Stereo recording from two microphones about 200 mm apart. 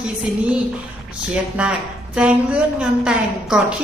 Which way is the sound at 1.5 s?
5° right (ahead or behind).